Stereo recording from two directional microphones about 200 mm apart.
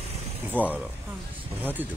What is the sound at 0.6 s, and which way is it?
Speech, 10° right (ahead or behind).